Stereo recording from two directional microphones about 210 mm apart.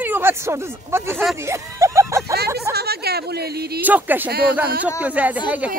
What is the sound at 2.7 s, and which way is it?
Speech, 50° right (ahead or behind).